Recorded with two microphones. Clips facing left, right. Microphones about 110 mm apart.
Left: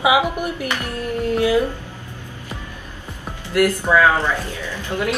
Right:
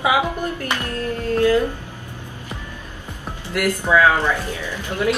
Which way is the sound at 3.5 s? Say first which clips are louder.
Left 2 dB; centre (ahead or behind).